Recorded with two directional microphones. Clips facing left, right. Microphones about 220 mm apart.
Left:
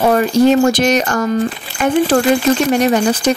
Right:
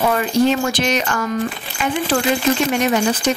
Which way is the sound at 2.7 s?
35° left (ahead or behind).